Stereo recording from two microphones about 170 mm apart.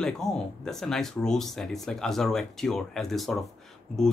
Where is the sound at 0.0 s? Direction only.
5° left (ahead or behind).